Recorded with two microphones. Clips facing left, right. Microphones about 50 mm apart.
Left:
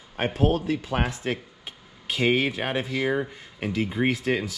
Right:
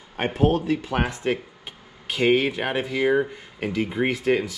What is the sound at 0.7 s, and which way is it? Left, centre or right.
Speech, right.